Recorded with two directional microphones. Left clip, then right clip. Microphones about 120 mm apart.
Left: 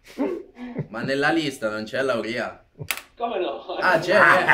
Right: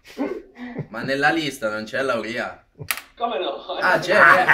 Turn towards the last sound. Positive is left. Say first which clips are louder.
# right 2 dB
turn(degrees=10)  # may be behind; listen again after turning